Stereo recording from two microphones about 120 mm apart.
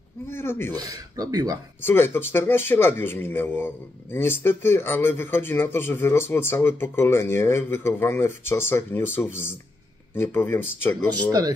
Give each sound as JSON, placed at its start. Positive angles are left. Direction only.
{"t": 0.3, "sound": "speech", "side_deg": 20}
{"t": 0.7, "sound": "speech", "side_deg": -30}
{"t": 1.8, "sound": "speech", "side_deg": 20}